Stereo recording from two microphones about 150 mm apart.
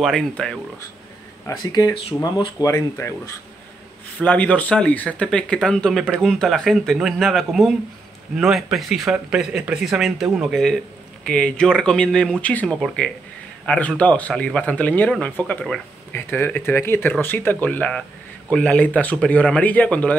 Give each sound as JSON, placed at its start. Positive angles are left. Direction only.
{"t": 0.0, "sound": "speech", "side_deg": 0}
{"t": 1.6, "sound": "speech", "side_deg": 25}
{"t": 4.2, "sound": "speech", "side_deg": 10}